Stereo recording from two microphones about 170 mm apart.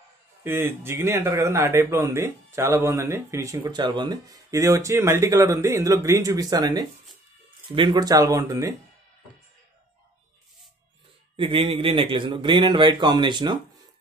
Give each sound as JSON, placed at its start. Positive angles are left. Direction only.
{"t": 0.4, "sound": "a man's voice", "side_deg": -15}
{"t": 11.3, "sound": "a man's voice", "side_deg": -30}